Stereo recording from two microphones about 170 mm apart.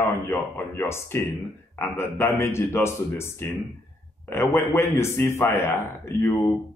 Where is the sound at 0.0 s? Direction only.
15° left (ahead or behind).